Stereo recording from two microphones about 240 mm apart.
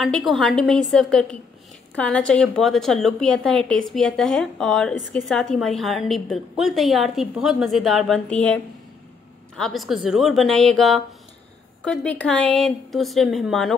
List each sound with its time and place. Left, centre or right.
0.0 s a woman's voice: centre
9.6 s a woman's voice: centre